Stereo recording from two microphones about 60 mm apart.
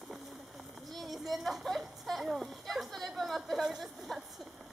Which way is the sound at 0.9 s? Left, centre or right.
Centre.